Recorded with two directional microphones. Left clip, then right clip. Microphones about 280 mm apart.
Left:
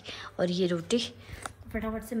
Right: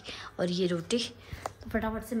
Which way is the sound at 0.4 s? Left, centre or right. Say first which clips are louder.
Left 2 dB; centre.